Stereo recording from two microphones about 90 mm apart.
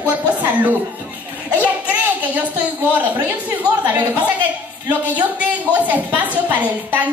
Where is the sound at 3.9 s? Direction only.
15° right (ahead or behind).